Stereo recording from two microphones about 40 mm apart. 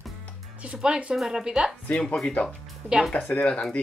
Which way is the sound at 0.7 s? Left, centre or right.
Right.